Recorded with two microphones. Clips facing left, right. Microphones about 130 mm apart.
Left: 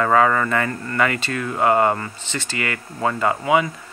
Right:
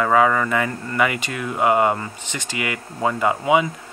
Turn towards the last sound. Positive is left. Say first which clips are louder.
# right 1 dB
turn(degrees=-15)  # may be behind; listen again after turning